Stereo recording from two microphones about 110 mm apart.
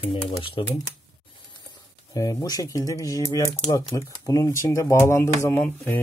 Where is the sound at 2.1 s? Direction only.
35° left (ahead or behind).